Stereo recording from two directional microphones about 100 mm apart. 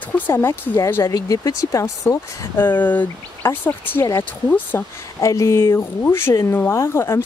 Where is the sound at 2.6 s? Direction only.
15° left (ahead or behind).